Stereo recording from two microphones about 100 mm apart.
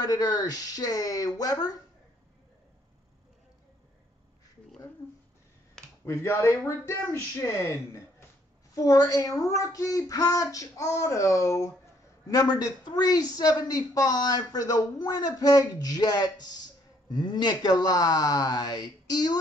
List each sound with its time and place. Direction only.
0.0 s speech: 40° left (ahead or behind)
6.0 s a woman's voice: 30° left (ahead or behind)